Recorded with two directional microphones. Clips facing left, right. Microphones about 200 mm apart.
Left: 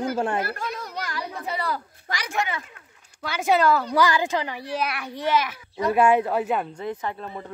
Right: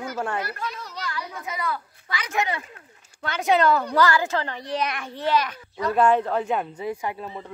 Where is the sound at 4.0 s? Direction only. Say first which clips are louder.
Even; 15° left (ahead or behind); by 7.5 s 5° right (ahead or behind).